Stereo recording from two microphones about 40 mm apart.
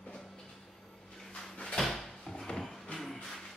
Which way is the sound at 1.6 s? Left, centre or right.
Centre.